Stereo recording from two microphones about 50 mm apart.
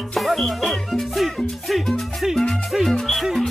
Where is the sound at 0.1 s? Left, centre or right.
Centre.